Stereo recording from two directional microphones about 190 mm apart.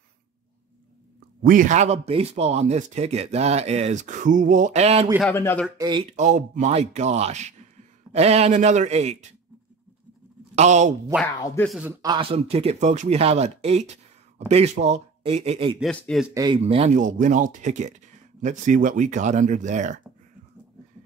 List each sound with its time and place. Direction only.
1.4 s speech: 45° right (ahead or behind)
5.3 s speech: 15° left (ahead or behind)
5.8 s speech: 25° right (ahead or behind)
6.1 s speech: 40° right (ahead or behind)
10.5 s speech: 40° right (ahead or behind)
11.6 s a man's voice: centre (ahead or behind)
11.9 s speech: 20° right (ahead or behind)
15.8 s a man's voice: centre (ahead or behind)
16.3 s speech: 25° right (ahead or behind)